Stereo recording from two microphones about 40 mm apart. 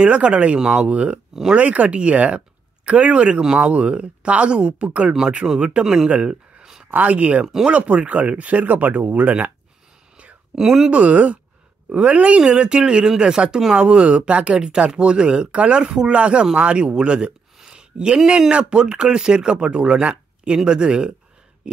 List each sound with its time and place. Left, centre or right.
0.0 s speech: right
0.6 s speech: centre
0.8 s speech: right
5.1 s speech: right
6.6 s a sound: centre
6.9 s speech: right
7.4 s speech: centre
7.7 s speech: right
10.5 s speech: centre
10.9 s speech: right
17.6 s a sound: centre
18.5 s speech: right